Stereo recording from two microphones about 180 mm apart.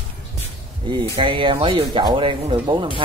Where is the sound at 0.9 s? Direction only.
30° right (ahead or behind).